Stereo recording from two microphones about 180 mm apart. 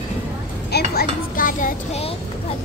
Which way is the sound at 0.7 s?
60° left (ahead or behind).